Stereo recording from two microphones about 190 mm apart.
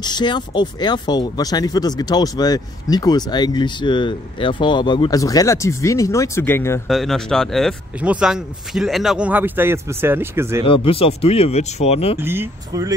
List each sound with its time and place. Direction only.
0.0 s speech: 25° left (ahead or behind)
6.9 s speech: centre (ahead or behind)
10.7 s speech: 30° left (ahead or behind)
12.2 s speech: 10° right (ahead or behind)